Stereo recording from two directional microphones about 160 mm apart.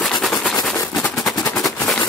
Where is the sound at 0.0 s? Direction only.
Centre (ahead or behind).